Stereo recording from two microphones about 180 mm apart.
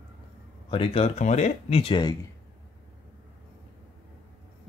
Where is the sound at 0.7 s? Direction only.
30° left (ahead or behind).